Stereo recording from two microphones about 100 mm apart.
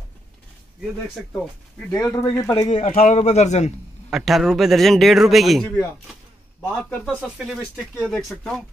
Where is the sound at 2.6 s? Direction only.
90° left.